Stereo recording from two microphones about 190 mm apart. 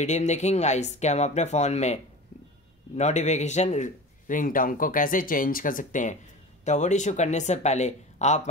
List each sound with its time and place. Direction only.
0.0 s speech: 35° left (ahead or behind)
3.0 s a man's voice: 35° left (ahead or behind)